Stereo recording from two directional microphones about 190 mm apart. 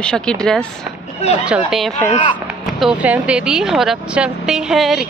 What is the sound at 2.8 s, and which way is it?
Speech, 5° right (ahead or behind).